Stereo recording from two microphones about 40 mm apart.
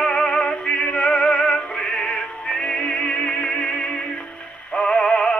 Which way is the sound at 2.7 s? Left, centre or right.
Left.